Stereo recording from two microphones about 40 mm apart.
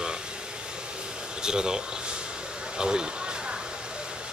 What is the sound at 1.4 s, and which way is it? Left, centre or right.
Speech, centre.